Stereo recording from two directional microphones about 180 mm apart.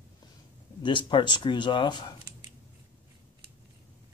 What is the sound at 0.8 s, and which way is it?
Speech, 25° left (ahead or behind).